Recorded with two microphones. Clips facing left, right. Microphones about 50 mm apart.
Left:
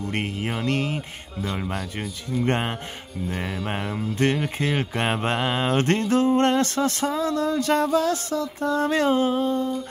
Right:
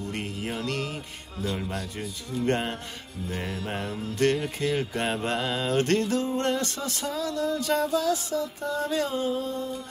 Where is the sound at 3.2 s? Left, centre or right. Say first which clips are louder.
Left 4 dB; left.